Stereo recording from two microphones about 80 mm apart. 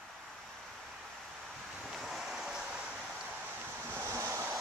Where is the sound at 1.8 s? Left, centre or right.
Centre.